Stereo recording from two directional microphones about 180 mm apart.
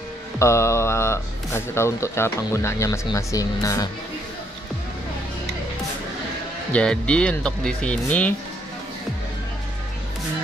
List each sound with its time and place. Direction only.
0.4 s speech: 15° left (ahead or behind)
6.7 s speech: 5° left (ahead or behind)